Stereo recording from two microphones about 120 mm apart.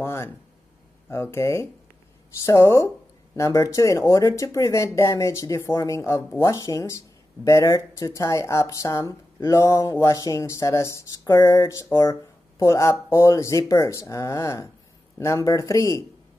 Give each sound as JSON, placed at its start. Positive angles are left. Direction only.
{"t": 0.0, "sound": "speech", "side_deg": 20}